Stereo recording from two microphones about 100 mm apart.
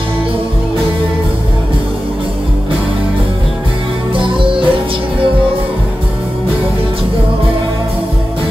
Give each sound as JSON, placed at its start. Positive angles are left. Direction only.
{"t": 4.1, "sound": "music", "side_deg": -60}